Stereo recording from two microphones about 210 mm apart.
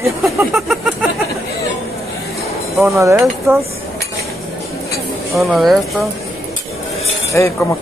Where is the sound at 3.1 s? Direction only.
Centre (ahead or behind).